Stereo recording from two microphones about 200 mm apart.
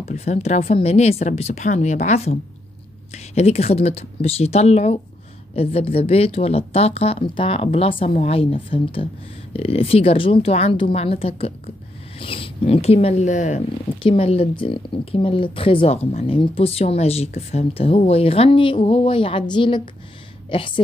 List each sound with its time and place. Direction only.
0.0 s speech: 35° left (ahead or behind)
3.3 s a woman's voice: 30° left (ahead or behind)